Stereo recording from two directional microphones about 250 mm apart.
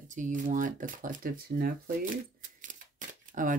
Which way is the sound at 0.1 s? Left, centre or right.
Right.